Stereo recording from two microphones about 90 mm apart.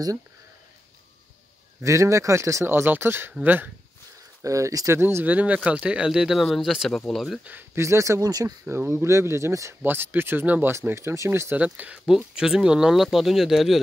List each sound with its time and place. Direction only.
1.8 s speech: 35° right (ahead or behind)
4.4 s speech: 35° right (ahead or behind); by 7.3 s centre (ahead or behind)
7.7 s speech: 30° right (ahead or behind)
8.6 s speech: 30° right (ahead or behind)
9.8 s speech: 25° right (ahead or behind)
11.6 s speech: 15° right (ahead or behind)